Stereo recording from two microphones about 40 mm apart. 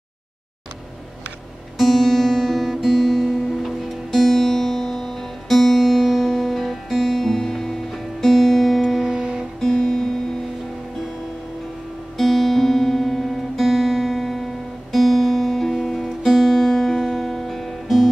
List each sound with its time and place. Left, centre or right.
1.8 s music: centre
9.0 s music: centre
9.6 s music: centre
12.2 s music: centre